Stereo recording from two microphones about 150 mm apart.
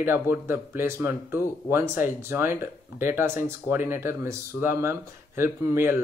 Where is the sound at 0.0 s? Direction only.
15° right (ahead or behind).